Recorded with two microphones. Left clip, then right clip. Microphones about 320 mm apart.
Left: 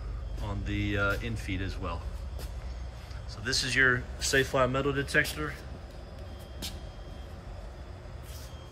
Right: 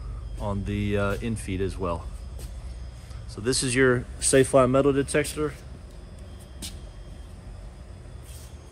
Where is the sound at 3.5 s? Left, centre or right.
Centre.